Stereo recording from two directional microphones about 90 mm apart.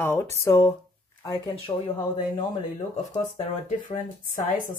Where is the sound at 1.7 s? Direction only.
45° left (ahead or behind).